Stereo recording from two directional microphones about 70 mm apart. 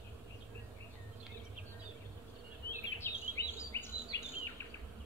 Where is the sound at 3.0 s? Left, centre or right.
Left.